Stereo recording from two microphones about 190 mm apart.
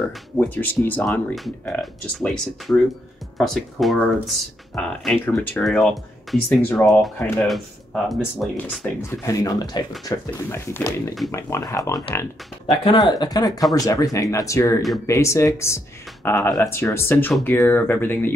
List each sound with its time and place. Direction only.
0.4 s speech: 10° left (ahead or behind)
7.4 s speech: centre (ahead or behind)
9.0 s speech: 15° left (ahead or behind)